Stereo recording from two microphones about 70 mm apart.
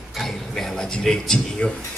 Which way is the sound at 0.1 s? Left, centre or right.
Centre.